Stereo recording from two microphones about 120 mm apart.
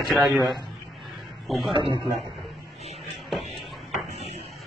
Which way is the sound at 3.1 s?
Centre (ahead or behind).